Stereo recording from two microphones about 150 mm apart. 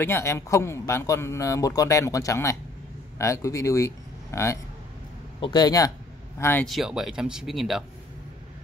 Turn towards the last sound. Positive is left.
turn(degrees=0)  # may be behind; listen again after turning